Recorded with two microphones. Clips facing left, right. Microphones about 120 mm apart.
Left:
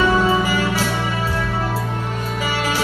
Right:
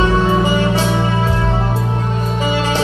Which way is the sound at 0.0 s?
25° right (ahead or behind).